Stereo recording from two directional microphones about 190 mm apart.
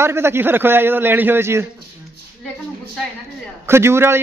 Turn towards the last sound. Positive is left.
turn(degrees=-15)  # may be behind; listen again after turning